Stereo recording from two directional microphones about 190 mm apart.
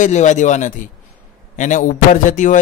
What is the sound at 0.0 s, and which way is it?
A man's voice, 40° left (ahead or behind).